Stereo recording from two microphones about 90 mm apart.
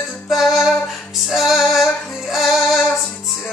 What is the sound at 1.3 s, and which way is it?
Female singing, centre (ahead or behind).